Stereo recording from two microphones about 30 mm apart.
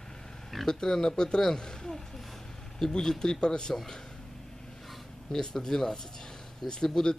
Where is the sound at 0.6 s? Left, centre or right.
Left.